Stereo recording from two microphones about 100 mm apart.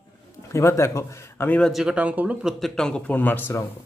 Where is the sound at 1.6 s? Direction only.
5° right (ahead or behind).